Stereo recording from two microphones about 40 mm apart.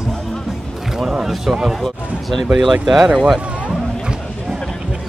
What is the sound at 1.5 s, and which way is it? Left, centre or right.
Speech, centre.